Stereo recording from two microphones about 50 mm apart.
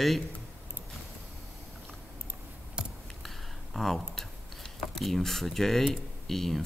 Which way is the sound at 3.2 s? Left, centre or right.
Centre.